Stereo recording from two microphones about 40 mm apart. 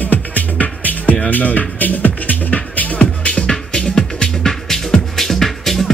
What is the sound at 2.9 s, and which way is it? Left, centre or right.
Music, left.